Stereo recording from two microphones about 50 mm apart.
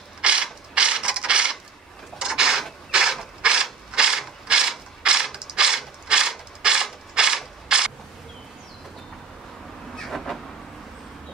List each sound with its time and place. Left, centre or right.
0.2 s mechanisms: centre
2.1 s a sound: centre
2.9 s mechanisms: centre
9.9 s vehicle: centre